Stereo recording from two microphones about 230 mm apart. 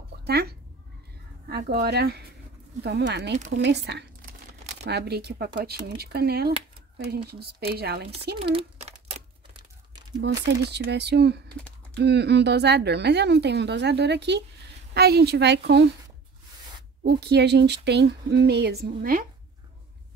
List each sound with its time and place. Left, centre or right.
0.3 s a woman's voice: right
8.4 s speech: right
10.2 s a woman's voice: right
17.0 s a woman's voice: right